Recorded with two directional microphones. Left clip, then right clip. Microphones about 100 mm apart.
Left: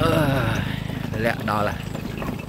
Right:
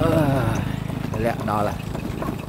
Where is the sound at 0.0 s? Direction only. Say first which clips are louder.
Even; 5° right (ahead or behind).